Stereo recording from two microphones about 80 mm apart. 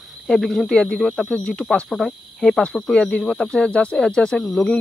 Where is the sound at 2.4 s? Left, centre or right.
Centre.